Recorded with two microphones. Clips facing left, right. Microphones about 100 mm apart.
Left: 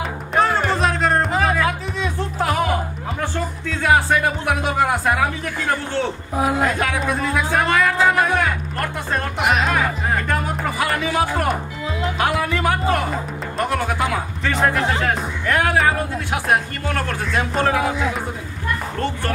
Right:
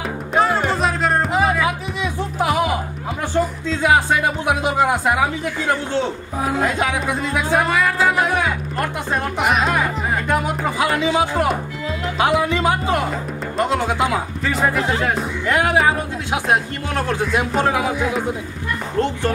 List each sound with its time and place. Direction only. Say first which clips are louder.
0.3 s music: right 1 dB; centre (ahead or behind); by 6.0 s 20° right (ahead or behind)
6.6 s speech: even; 20° right (ahead or behind)
7.6 s speech: left 1 dB; centre (ahead or behind)
8.2 s music: even; 15° right (ahead or behind)
12.2 s speech: right 4 dB; 20° right (ahead or behind)
14.4 s speech: left 2 dB; centre (ahead or behind)
15.4 s speech: right 1 dB; 20° right (ahead or behind)